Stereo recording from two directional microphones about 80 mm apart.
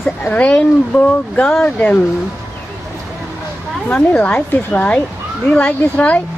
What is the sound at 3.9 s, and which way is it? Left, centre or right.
Speech, left.